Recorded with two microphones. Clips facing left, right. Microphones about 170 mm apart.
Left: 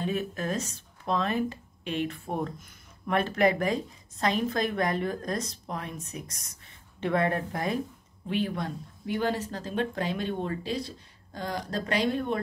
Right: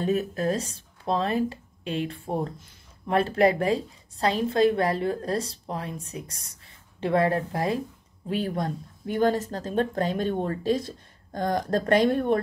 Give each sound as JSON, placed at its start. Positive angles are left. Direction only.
{"t": 0.0, "sound": "a woman's voice", "side_deg": -40}